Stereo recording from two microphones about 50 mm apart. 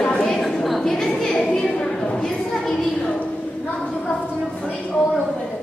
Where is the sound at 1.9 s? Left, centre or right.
Centre.